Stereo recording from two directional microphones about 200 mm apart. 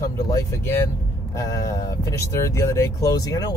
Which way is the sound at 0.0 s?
15° left (ahead or behind).